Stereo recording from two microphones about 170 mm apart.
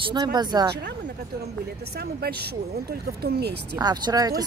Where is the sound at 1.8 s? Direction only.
70° right (ahead or behind).